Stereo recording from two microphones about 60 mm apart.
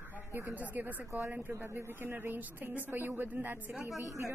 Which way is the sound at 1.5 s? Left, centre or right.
Right.